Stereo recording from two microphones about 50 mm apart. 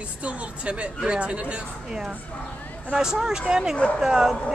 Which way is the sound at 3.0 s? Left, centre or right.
Centre.